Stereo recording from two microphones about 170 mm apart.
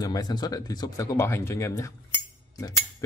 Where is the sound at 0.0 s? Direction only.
25° left (ahead or behind).